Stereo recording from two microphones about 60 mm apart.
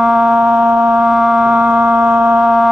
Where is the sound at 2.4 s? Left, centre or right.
Centre.